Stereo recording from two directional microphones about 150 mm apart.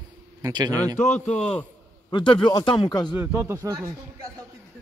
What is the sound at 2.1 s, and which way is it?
Speech, 30° left (ahead or behind).